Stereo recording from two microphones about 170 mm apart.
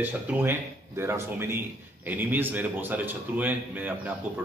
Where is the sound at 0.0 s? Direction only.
10° right (ahead or behind).